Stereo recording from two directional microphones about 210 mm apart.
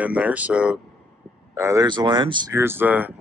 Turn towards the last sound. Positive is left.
turn(degrees=-10)  # may be behind; listen again after turning